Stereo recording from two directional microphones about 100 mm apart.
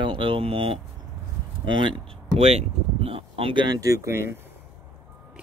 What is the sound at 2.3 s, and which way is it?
Speech, 90° right.